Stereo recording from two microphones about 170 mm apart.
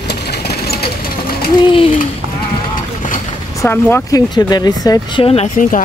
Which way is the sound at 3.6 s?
10° left (ahead or behind).